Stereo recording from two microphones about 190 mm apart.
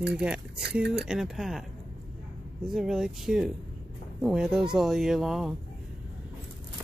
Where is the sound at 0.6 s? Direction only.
60° right (ahead or behind).